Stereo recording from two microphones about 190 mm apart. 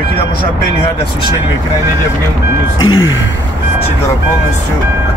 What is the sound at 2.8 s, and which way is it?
Speech, 90° left.